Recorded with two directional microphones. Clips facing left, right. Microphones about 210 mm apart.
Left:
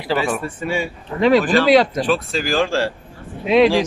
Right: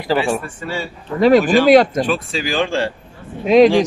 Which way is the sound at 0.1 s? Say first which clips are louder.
Right 2 dB; 40° right (ahead or behind).